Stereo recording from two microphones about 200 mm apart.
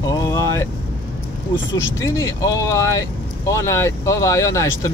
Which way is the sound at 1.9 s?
15° left (ahead or behind).